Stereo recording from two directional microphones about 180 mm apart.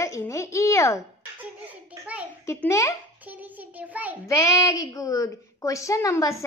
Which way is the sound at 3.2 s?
10° right (ahead or behind).